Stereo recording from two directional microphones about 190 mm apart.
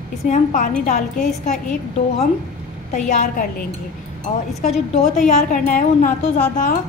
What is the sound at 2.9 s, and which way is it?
Speech, 40° left (ahead or behind).